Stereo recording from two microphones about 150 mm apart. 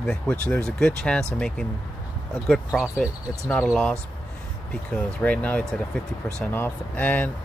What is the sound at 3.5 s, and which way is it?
Speech, 10° left (ahead or behind).